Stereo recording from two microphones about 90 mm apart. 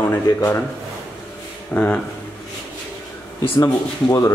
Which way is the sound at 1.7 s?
15° left (ahead or behind).